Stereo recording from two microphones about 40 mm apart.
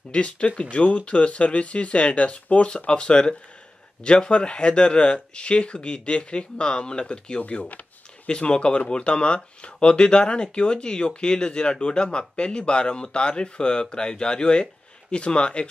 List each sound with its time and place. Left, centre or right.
0.1 s speech: left
7.4 s speech: left
8.3 s speech: left